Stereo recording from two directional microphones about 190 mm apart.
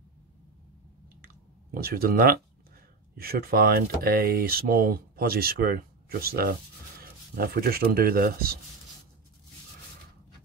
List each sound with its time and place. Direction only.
1.2 s clicking: 50° right (ahead or behind)
3.2 s speech: 50° right (ahead or behind)